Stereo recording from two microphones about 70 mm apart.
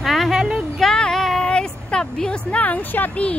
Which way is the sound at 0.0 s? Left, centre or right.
Centre.